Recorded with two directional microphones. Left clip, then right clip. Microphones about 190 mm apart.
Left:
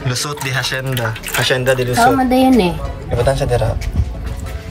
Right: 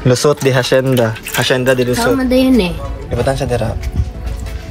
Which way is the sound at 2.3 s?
55° left (ahead or behind).